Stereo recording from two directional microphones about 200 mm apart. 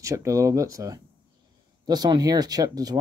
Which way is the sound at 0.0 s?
15° right (ahead or behind).